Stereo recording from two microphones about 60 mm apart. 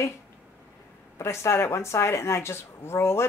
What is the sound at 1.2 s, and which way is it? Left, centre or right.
Speech, left.